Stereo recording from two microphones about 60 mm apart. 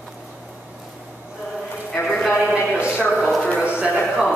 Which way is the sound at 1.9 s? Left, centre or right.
Centre.